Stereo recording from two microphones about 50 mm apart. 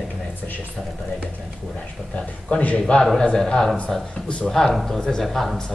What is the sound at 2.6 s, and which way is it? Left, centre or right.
Speech, left.